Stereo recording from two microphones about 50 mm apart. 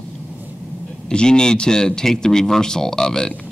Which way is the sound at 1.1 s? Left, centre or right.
Centre.